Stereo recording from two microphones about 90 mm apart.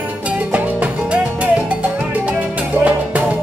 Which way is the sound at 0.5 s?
15° right (ahead or behind).